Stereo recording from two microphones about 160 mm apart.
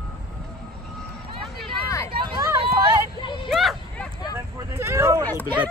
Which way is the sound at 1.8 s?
20° left (ahead or behind).